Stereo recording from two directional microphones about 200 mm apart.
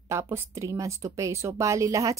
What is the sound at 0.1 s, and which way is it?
A woman's voice, 15° right (ahead or behind).